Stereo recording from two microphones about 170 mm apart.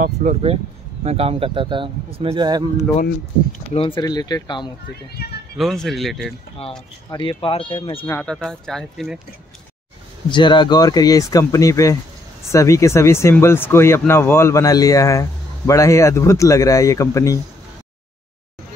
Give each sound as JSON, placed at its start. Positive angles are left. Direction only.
{"t": 0.0, "sound": "speech", "side_deg": -50}
{"t": 1.0, "sound": "speech", "side_deg": -35}
{"t": 3.7, "sound": "speech", "side_deg": 30}
{"t": 5.1, "sound": "speech", "side_deg": 65}
{"t": 5.6, "sound": "speech", "side_deg": 0}
{"t": 7.1, "sound": "speech", "side_deg": 30}
{"t": 8.0, "sound": "speech", "side_deg": 10}
{"t": 10.3, "sound": "speech", "side_deg": 25}